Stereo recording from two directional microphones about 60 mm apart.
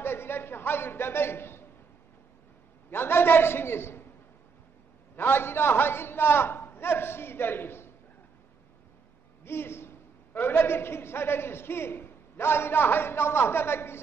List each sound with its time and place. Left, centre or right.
0.0 s a sound: left
2.9 s a man's voice: left
5.1 s a man's voice: left
9.4 s a man's voice: left